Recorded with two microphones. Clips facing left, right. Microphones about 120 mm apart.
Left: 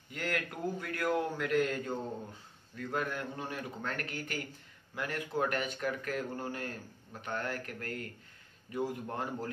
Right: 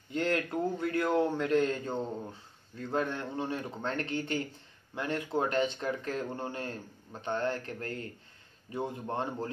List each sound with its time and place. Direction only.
0.1 s a man's voice: 25° right (ahead or behind)